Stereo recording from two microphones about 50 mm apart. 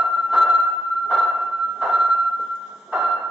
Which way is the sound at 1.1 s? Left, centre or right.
Centre.